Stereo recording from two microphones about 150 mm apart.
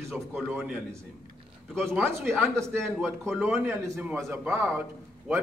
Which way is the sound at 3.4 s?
15° right (ahead or behind).